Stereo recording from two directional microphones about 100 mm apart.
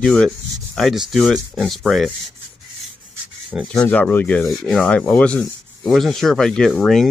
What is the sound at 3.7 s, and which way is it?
Speech, 10° left (ahead or behind).